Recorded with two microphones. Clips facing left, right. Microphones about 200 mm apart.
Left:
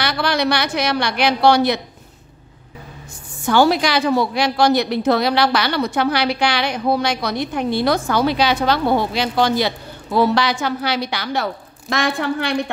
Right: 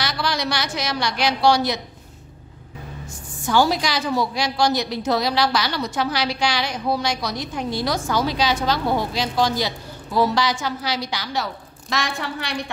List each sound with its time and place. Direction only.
0.0 s a woman's voice: 60° left (ahead or behind)
3.4 s a woman's voice: 60° left (ahead or behind)